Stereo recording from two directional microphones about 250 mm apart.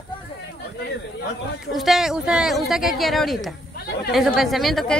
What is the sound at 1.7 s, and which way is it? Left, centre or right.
Speech, centre.